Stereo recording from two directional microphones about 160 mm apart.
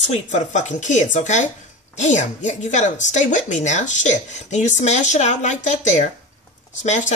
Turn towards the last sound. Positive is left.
turn(degrees=50)  # may be behind; listen again after turning